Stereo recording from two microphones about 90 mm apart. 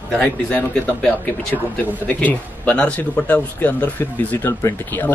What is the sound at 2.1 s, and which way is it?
Speech, 20° left (ahead or behind).